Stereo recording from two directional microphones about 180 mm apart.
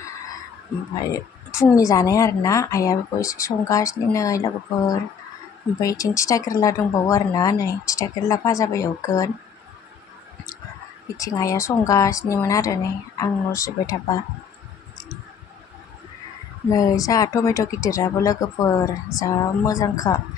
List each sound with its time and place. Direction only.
0.9 s a woman's voice: 15° left (ahead or behind)
11.1 s a woman's voice: 20° left (ahead or behind)
16.6 s speech: 20° left (ahead or behind)